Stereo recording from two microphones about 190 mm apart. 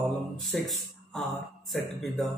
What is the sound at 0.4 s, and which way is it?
Speech, centre (ahead or behind).